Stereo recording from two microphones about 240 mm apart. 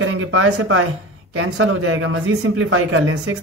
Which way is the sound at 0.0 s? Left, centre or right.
Right.